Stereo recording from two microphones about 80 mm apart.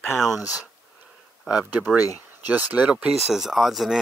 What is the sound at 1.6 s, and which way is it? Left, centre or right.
Speech, right.